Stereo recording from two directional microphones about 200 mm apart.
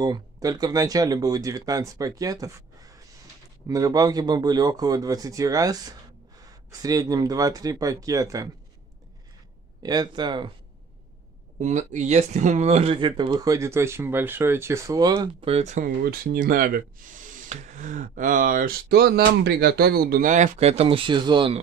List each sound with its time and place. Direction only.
0.0 s speech: 20° right (ahead or behind)
9.8 s speech: 20° right (ahead or behind)
11.6 s speech: 35° right (ahead or behind); by 15.5 s 20° right (ahead or behind)
15.5 s speech: 35° right (ahead or behind)